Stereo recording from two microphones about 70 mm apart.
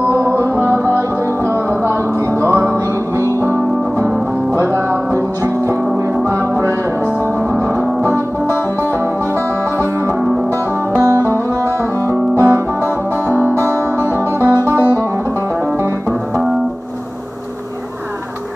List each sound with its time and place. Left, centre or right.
0.1 s music: right
7.7 s music: right
11.0 s music: right
14.4 s music: right